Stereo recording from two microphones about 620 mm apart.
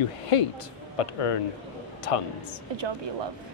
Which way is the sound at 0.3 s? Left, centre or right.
Left.